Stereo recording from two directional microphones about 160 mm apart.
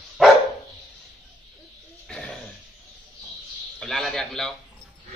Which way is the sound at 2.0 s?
5° left (ahead or behind).